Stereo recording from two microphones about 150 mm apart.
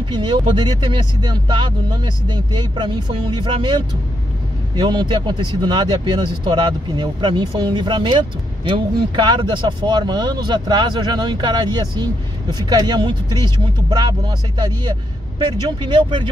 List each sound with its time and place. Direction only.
0.1 s speech: 30° right (ahead or behind)